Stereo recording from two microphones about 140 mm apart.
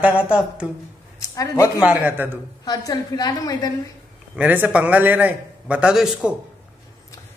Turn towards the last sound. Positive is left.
turn(degrees=-5)  # may be behind; listen again after turning